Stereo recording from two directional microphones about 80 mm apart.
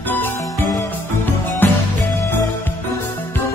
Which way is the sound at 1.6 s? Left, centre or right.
Left.